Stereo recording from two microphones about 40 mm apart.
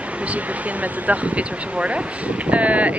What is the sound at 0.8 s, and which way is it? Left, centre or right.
Speech, right.